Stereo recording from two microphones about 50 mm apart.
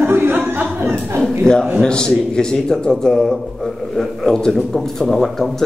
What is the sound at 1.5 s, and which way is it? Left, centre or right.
A man's voice, centre.